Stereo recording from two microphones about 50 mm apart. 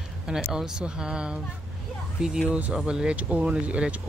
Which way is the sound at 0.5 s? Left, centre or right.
Centre.